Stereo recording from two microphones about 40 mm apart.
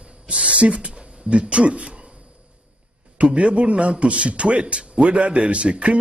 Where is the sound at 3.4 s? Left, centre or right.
Right.